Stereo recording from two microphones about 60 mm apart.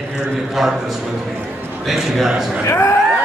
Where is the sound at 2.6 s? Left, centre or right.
Left.